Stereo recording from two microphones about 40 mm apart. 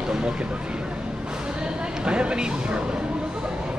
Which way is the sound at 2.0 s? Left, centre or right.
Right.